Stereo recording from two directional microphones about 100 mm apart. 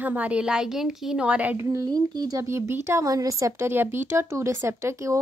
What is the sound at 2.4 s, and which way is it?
Speech, 30° right (ahead or behind).